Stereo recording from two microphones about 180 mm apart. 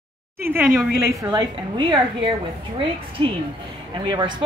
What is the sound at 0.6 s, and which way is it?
Speech, centre (ahead or behind).